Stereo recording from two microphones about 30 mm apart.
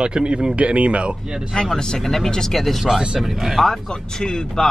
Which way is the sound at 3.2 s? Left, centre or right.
Centre.